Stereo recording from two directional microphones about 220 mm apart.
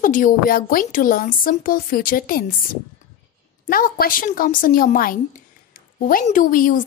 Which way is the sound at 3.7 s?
40° left (ahead or behind).